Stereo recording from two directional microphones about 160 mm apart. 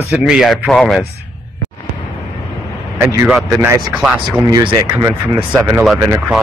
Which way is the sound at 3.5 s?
15° right (ahead or behind).